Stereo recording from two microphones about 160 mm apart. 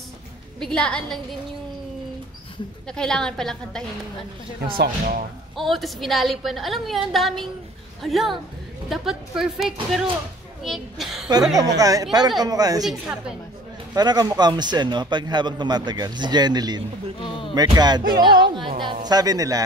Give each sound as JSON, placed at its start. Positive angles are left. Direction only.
{"t": 0.6, "sound": "a woman's voice", "side_deg": 5}
{"t": 2.9, "sound": "a woman's voice", "side_deg": 5}
{"t": 4.7, "sound": "speech", "side_deg": -65}
{"t": 5.6, "sound": "a woman's voice", "side_deg": 0}
{"t": 11.8, "sound": "a man's voice", "side_deg": -20}
{"t": 12.8, "sound": "a woman's voice", "side_deg": 0}
{"t": 13.9, "sound": "a man's voice", "side_deg": -25}
{"t": 17.2, "sound": "speech", "side_deg": 30}
{"t": 17.7, "sound": "a man's voice", "side_deg": -25}